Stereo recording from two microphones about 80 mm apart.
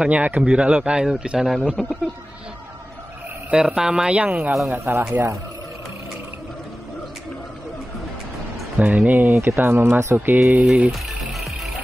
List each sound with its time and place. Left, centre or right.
0.0 s speech: centre
3.4 s speech: centre
4.6 s speech: right
8.7 s speech: centre
10.9 s music: centre